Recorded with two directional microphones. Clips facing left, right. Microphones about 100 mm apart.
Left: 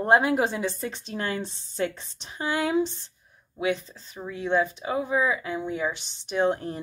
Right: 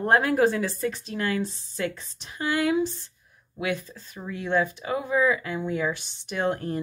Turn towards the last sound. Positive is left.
turn(degrees=20)  # may be behind; listen again after turning